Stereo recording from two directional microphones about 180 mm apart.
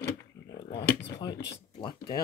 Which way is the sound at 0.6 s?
25° left (ahead or behind).